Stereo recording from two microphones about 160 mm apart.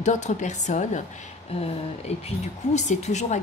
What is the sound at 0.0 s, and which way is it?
A woman's voice, 50° left (ahead or behind).